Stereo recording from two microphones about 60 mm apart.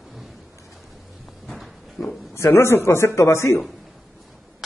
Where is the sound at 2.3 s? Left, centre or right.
Left.